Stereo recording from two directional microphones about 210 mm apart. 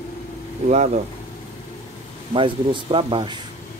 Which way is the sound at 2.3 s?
25° right (ahead or behind).